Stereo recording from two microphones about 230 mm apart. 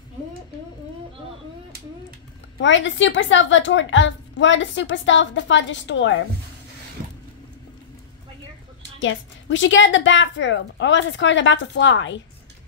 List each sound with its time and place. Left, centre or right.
2.6 s a woman's voice: left
9.0 s a woman's voice: left